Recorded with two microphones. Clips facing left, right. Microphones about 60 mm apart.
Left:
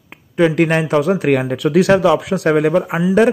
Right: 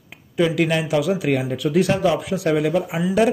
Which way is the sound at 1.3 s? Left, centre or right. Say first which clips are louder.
Left 5 dB; left.